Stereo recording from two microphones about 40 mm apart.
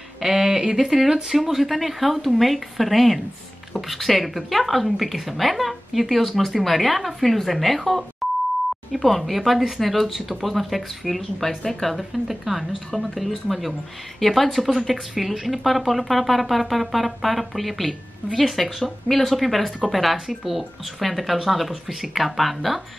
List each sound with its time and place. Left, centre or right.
0.2 s speech: centre
8.2 s beep: centre
8.9 s speech: centre